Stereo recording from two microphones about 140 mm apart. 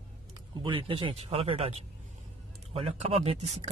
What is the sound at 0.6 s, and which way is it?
Speech, 40° right (ahead or behind).